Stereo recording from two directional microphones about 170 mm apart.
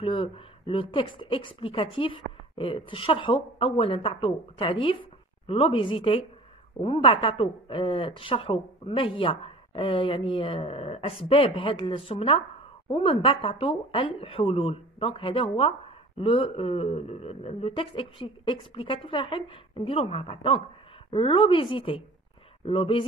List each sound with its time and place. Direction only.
0.0 s a woman's voice: 30° left (ahead or behind)